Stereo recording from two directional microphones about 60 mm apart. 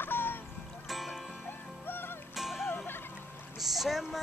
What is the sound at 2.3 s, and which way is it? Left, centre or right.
Music, centre.